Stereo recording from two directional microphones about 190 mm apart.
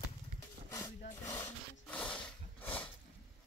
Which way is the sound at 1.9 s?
5° left (ahead or behind).